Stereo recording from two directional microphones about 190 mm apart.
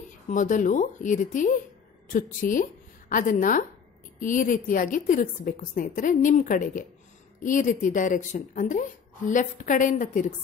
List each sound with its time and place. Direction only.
0.3 s a woman's voice: 40° left (ahead or behind)